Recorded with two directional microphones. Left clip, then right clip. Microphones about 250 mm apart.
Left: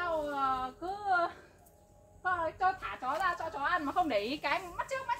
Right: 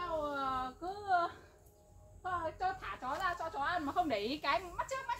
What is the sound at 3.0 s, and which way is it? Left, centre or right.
Speech, centre.